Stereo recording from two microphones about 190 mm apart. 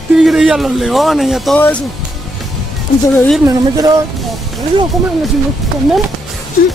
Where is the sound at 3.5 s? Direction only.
20° right (ahead or behind).